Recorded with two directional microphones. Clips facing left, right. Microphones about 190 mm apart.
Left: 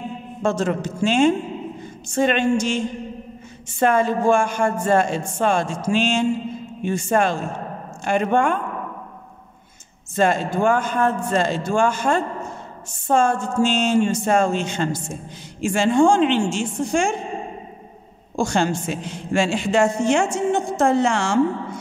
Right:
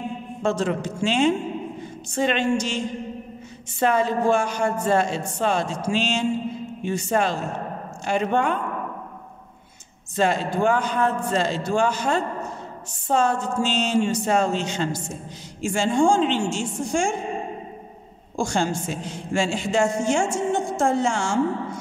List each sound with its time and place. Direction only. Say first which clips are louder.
0.4 s speech: left 2 dB; 45° left (ahead or behind)
3.8 s speech: left 3 dB; 50° left (ahead or behind)
10.1 s speech: left 2 dB; 50° left (ahead or behind)
15.6 s a man's voice: left 3 dB; 65° left (ahead or behind)
18.3 s a man's voice: left 3 dB; 65° left (ahead or behind)